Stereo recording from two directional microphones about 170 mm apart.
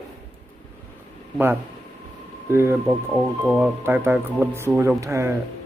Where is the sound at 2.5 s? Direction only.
15° right (ahead or behind).